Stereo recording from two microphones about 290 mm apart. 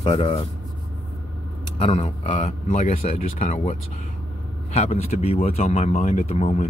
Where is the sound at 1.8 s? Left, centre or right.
Left.